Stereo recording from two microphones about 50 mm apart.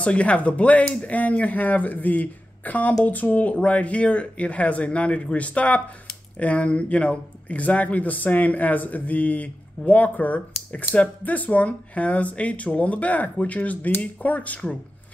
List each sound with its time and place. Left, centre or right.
0.0 s speech: left